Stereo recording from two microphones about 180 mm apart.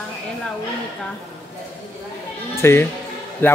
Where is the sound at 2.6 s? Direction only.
15° left (ahead or behind).